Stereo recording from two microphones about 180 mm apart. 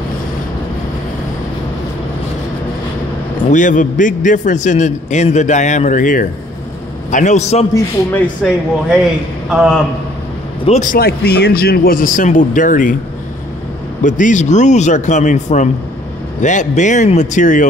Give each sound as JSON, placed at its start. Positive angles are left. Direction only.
{"t": 3.5, "sound": "a man's voice", "side_deg": 45}
{"t": 8.5, "sound": "speech", "side_deg": -5}
{"t": 10.6, "sound": "a man's voice", "side_deg": 40}
{"t": 14.0, "sound": "a man's voice", "side_deg": 45}